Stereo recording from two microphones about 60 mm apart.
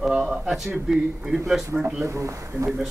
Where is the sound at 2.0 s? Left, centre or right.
Right.